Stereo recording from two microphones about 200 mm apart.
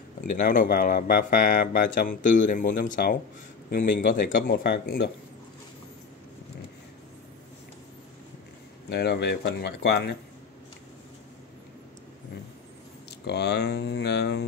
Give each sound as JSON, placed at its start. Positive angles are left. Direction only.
{"t": 0.2, "sound": "speech", "side_deg": 40}
{"t": 8.8, "sound": "speech", "side_deg": 55}
{"t": 13.3, "sound": "speech", "side_deg": 55}